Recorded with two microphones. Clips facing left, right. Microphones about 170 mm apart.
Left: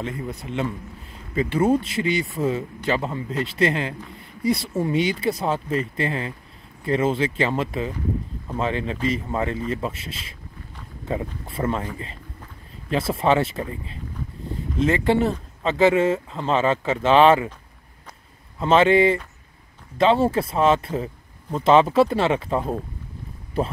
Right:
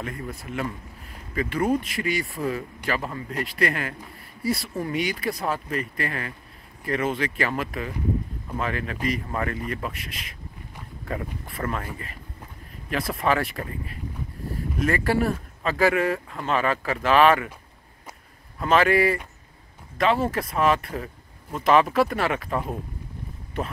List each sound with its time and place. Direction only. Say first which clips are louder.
0.0 s speech: left 4 dB; 20° left (ahead or behind)
12.9 s speech: left 4 dB; 25° left (ahead or behind)
18.6 s speech: left 4 dB; 25° left (ahead or behind)